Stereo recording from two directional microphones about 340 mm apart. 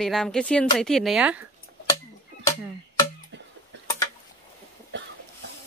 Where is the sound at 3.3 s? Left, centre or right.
Right.